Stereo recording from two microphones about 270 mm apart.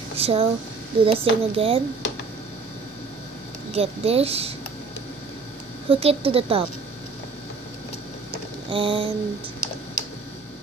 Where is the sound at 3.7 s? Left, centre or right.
Right.